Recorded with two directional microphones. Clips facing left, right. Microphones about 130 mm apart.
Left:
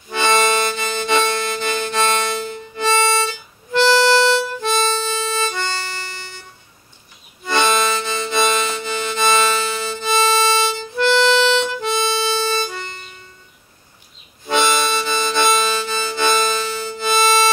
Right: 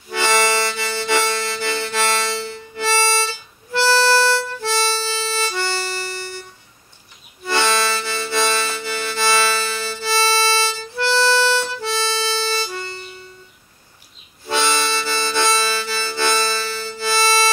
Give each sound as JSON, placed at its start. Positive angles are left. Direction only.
{"t": 0.1, "sound": "harmonica", "side_deg": 20}
{"t": 7.4, "sound": "harmonica", "side_deg": 20}
{"t": 14.4, "sound": "harmonica", "side_deg": 20}